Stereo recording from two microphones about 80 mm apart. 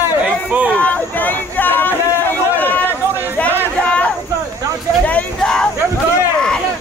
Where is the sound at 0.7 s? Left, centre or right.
Centre.